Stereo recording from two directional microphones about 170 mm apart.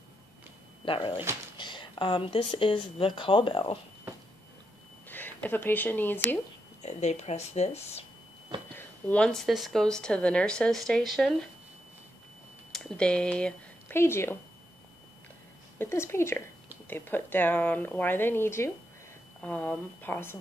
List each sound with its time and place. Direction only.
0.8 s speech: 30° left (ahead or behind)
5.0 s speech: 10° left (ahead or behind)
6.8 s speech: 40° left (ahead or behind)
8.7 s a woman's voice: 10° left (ahead or behind)
12.7 s speech: 5° left (ahead or behind)
15.8 s speech: 15° left (ahead or behind)